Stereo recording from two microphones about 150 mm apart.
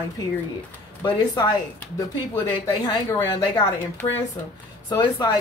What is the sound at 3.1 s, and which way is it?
Speech, 20° left (ahead or behind).